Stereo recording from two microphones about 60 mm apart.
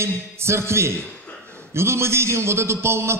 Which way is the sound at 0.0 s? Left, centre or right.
Right.